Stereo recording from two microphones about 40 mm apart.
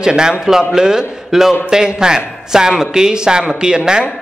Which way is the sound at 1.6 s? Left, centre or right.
Centre.